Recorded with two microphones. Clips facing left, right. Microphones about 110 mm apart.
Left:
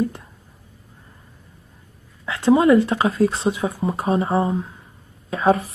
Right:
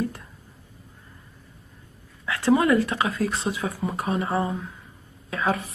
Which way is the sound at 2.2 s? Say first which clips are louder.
Left 5 dB; 20° left (ahead or behind).